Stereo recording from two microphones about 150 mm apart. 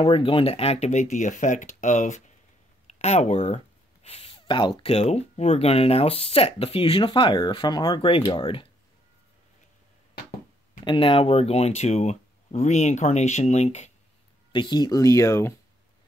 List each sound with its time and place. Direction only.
0.0 s speech: 35° left (ahead or behind)
10.8 s speech: 35° left (ahead or behind)
14.5 s speech: 30° left (ahead or behind)